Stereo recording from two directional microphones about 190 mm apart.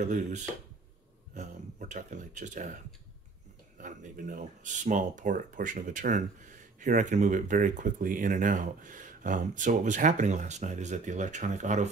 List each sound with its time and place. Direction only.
0.0 s speech: 40° right (ahead or behind)
3.8 s speech: 40° right (ahead or behind)